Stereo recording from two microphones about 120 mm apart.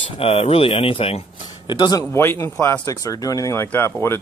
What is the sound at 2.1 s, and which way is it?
Speech, 20° left (ahead or behind).